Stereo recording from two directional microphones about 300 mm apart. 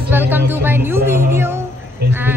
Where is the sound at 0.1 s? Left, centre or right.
Centre.